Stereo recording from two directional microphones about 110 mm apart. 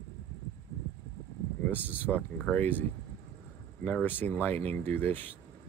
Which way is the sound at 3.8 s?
15° left (ahead or behind).